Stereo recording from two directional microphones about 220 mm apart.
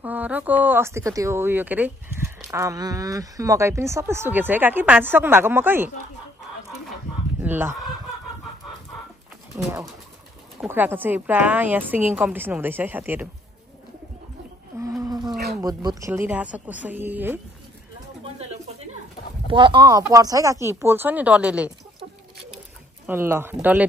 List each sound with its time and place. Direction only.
0.0 s speech: 5° right (ahead or behind)
7.3 s fowl: 10° right (ahead or behind)
9.6 s speech: 10° right (ahead or behind)
14.8 s a sound: 15° right (ahead or behind)
15.6 s speech: 15° right (ahead or behind)
18.2 s a sound: 30° right (ahead or behind)
19.4 s speech: 20° right (ahead or behind); by 21.7 s 5° right (ahead or behind)
23.0 s speech: 10° right (ahead or behind)